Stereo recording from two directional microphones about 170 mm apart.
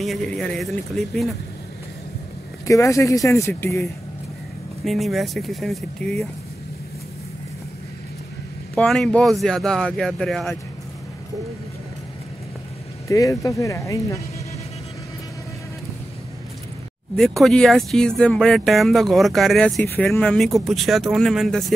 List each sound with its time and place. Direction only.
0.0 s speech: centre (ahead or behind)
2.6 s speech: 20° left (ahead or behind)
4.8 s speech: centre (ahead or behind)
8.7 s speech: 5° left (ahead or behind)
13.1 s speech: 20° left (ahead or behind)
17.2 s speech: centre (ahead or behind)